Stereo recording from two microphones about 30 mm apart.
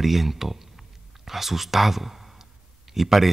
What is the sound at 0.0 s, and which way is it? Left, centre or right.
Speech, centre.